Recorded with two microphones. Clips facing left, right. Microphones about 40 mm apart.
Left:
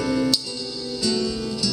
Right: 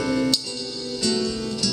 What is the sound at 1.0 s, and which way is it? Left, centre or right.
Music, right.